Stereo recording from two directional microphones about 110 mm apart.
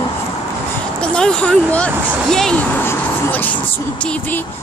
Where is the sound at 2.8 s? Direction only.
15° left (ahead or behind).